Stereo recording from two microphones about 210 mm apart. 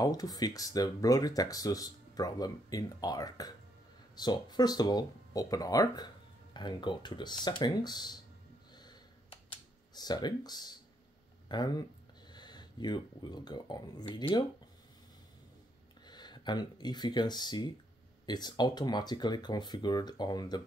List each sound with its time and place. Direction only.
0.0 s speech: 15° left (ahead or behind)
9.9 s speech: 20° left (ahead or behind)
16.1 s speech: 20° left (ahead or behind)